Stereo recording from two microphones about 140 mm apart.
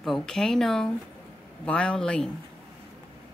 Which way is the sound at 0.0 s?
5° left (ahead or behind).